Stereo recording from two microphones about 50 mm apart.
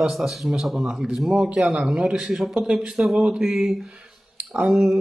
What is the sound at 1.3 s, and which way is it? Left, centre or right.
Speech, right.